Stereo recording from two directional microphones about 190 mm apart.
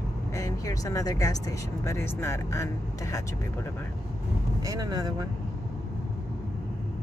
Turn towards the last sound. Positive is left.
turn(degrees=-20)  # may be behind; listen again after turning